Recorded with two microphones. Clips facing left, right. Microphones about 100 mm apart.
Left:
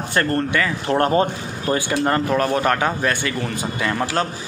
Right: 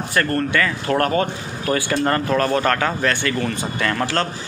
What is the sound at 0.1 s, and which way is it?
Speech, 25° left (ahead or behind).